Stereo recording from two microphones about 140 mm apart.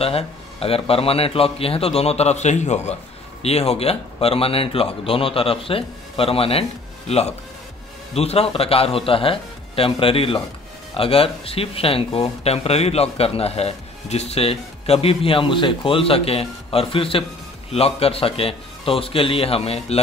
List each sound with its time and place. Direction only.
0.0 s a man's voice: 45° left (ahead or behind)